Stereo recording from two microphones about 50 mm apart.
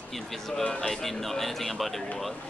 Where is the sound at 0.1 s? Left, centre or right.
Centre.